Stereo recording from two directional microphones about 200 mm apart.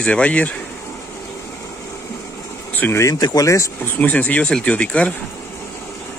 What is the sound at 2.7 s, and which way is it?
Speech, 10° left (ahead or behind).